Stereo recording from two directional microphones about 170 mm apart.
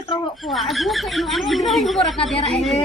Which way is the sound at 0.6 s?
Centre (ahead or behind).